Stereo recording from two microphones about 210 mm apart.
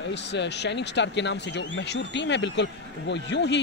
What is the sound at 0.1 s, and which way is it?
Speech, 55° left (ahead or behind).